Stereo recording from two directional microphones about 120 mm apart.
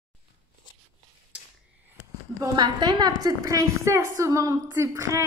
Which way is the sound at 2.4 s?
35° right (ahead or behind).